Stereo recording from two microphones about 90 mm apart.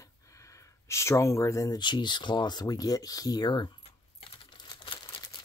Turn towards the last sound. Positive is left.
turn(degrees=60)  # may be behind; listen again after turning